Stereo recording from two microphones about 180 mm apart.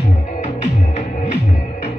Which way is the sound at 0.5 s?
40° left (ahead or behind).